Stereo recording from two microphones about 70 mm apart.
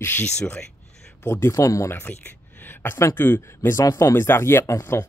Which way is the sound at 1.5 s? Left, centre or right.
Left.